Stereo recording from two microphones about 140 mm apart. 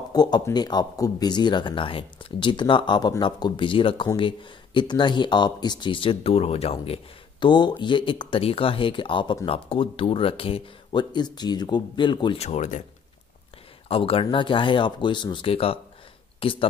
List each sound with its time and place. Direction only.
0.1 s speech: 30° left (ahead or behind)
12.4 s speech: 55° left (ahead or behind)
13.8 s speech: 40° left (ahead or behind)